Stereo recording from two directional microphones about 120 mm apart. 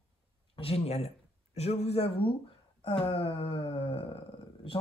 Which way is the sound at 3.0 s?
50° left (ahead or behind).